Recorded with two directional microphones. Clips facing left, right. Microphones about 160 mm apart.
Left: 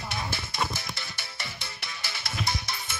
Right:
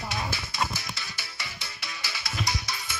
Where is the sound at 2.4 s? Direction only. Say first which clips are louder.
Left 1 dB; 55° left (ahead or behind).